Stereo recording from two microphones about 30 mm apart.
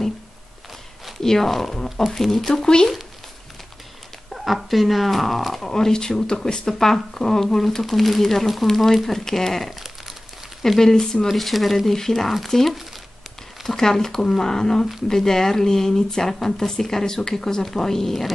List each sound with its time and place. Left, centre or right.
1.2 s speech: centre
2.5 s speech: left
4.3 s speech: centre
5.6 s speech: centre
10.8 s speech: centre
11.2 s speech: centre
11.9 s speech: centre